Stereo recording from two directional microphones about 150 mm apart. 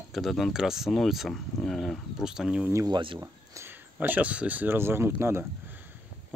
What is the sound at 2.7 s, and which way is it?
Speech, 20° right (ahead or behind).